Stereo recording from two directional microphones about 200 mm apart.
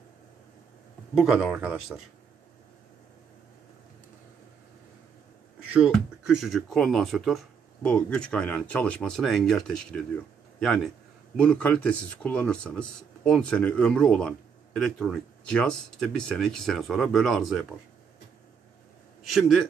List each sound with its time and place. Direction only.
1.1 s speech: 5° right (ahead or behind)
5.7 s a man's voice: centre (ahead or behind)